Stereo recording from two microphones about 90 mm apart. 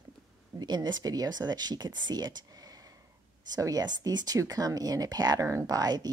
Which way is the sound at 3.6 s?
45° right (ahead or behind).